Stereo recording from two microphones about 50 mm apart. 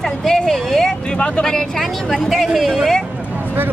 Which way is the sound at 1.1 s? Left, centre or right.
Left.